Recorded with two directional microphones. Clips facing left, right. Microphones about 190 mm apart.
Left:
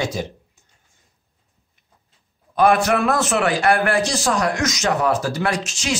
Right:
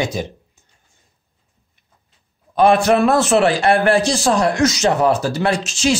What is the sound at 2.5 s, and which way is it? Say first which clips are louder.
A man's voice: right 3 dB; 30° right (ahead or behind).